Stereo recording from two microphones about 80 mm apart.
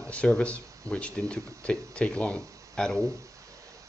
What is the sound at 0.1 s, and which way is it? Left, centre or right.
Speech, centre.